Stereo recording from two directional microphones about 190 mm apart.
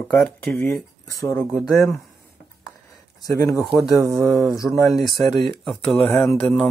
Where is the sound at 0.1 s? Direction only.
5° left (ahead or behind).